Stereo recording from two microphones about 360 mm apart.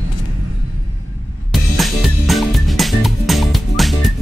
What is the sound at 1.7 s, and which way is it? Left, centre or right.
Music, centre.